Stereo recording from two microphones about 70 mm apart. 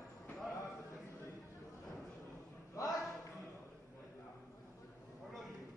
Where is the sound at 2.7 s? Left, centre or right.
Left.